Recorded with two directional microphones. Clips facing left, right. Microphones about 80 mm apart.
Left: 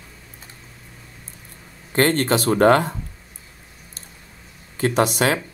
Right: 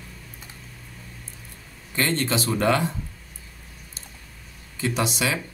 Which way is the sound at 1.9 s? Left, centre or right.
Left.